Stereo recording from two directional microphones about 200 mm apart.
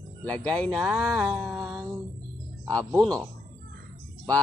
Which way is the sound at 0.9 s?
5° right (ahead or behind).